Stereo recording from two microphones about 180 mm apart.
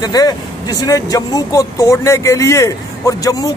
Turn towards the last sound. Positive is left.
turn(degrees=20)  # may be behind; listen again after turning